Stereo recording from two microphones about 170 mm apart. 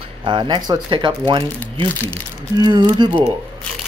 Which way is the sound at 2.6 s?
25° right (ahead or behind).